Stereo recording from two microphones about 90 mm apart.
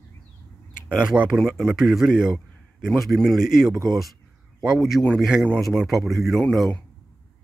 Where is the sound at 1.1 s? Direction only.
10° right (ahead or behind).